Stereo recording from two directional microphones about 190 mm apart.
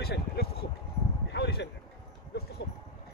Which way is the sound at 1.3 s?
60° left (ahead or behind).